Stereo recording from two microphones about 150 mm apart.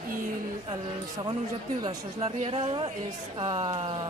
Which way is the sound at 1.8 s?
35° right (ahead or behind).